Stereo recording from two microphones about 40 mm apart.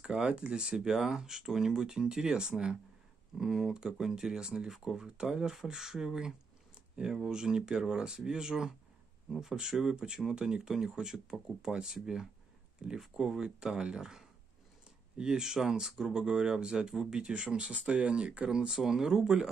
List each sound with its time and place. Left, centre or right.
0.0 s speech: centre
0.3 s speech: right
18.7 s speech: centre